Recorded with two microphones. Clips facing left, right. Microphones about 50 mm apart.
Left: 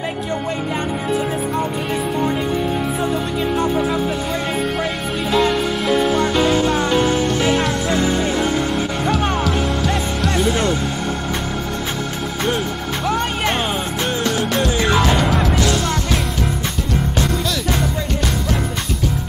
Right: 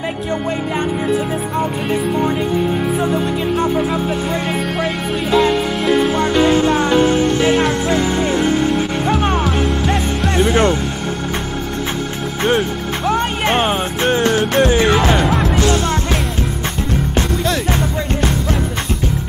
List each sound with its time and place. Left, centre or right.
5.3 s music: right
12.4 s music: right
17.5 s music: right